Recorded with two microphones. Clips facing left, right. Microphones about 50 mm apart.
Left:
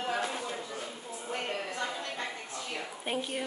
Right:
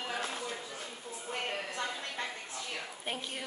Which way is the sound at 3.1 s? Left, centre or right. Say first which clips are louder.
Left 6 dB; centre.